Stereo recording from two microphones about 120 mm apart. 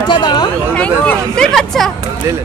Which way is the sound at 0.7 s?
10° left (ahead or behind).